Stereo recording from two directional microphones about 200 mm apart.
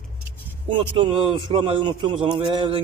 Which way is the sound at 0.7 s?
25° right (ahead or behind).